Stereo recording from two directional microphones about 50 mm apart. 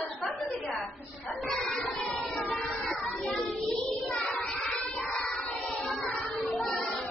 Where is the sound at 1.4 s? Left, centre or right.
Centre.